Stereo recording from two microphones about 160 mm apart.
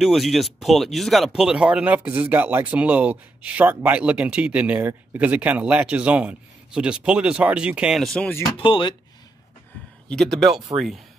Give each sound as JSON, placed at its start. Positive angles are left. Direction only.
{"t": 0.0, "sound": "speech", "side_deg": 0}
{"t": 8.5, "sound": "speech", "side_deg": 30}
{"t": 10.0, "sound": "speech", "side_deg": 0}